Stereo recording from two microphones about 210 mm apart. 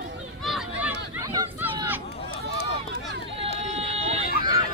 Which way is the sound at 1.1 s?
15° right (ahead or behind).